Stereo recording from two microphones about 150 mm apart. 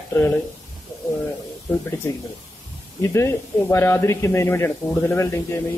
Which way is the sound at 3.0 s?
20° left (ahead or behind).